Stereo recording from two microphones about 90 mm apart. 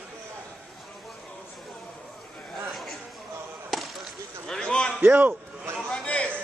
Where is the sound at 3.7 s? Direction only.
Centre (ahead or behind).